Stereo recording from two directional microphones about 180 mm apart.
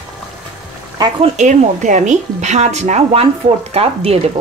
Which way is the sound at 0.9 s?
25° right (ahead or behind).